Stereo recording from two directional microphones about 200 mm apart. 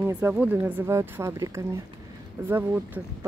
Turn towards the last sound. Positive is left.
turn(degrees=-10)  # may be behind; listen again after turning